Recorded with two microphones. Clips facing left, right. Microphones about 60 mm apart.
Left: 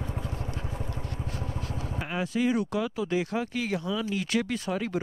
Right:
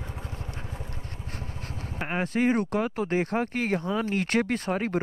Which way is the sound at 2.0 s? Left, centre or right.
Right.